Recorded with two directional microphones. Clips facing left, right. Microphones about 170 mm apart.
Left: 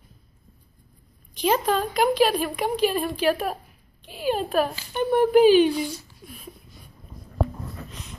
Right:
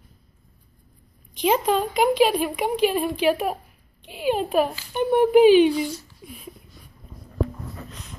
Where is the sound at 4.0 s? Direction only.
20° right (ahead or behind).